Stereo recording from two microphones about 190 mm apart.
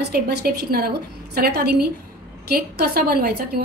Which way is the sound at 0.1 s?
55° right (ahead or behind).